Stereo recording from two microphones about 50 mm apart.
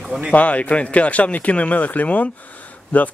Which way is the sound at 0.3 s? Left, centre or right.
Left.